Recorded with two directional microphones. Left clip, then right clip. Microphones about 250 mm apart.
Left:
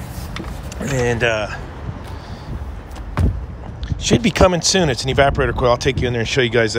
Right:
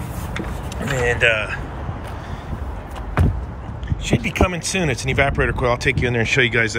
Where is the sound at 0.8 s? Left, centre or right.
Left.